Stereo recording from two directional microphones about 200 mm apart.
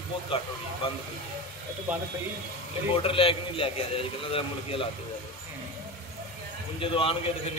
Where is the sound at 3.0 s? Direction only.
25° left (ahead or behind).